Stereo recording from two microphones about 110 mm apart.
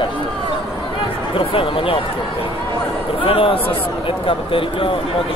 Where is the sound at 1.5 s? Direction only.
55° left (ahead or behind).